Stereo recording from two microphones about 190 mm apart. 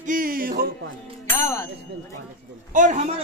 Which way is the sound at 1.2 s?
15° left (ahead or behind).